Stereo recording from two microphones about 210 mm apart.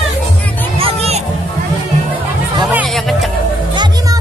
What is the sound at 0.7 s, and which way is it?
Music, 30° right (ahead or behind).